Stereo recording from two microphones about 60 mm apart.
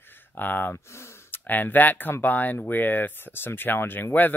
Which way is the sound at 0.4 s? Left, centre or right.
Left.